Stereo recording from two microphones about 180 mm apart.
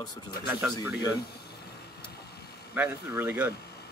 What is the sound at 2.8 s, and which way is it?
Speech, 10° right (ahead or behind).